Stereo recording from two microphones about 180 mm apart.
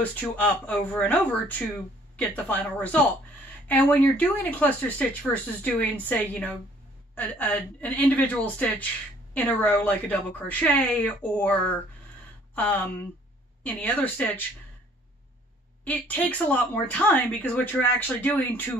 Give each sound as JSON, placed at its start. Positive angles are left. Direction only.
{"t": 0.0, "sound": "speech", "side_deg": 10}
{"t": 15.8, "sound": "speech", "side_deg": 10}